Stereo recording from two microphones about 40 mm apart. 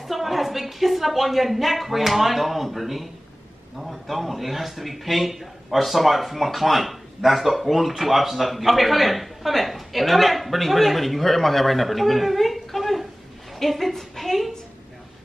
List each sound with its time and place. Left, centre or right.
0.0 s a woman's voice: centre